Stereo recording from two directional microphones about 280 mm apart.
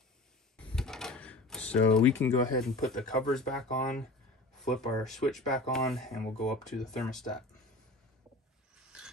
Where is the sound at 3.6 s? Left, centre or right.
Left.